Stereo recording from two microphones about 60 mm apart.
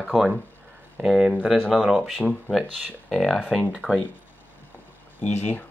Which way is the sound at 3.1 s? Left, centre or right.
Centre.